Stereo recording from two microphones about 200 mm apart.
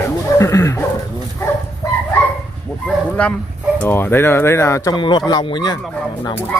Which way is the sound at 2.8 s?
5° left (ahead or behind).